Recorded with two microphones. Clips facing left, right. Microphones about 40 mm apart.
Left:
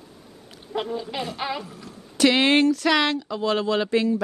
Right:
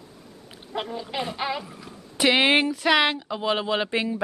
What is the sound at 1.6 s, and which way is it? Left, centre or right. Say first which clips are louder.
Speech: left 1 dB; right.